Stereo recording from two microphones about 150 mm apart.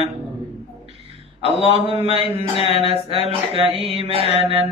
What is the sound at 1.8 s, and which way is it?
Mantra, 40° right (ahead or behind).